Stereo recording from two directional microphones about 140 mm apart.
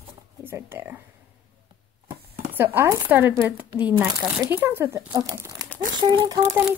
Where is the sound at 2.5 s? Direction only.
20° right (ahead or behind).